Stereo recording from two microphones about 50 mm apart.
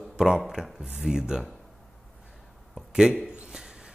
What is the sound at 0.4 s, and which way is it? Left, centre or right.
Speech, centre.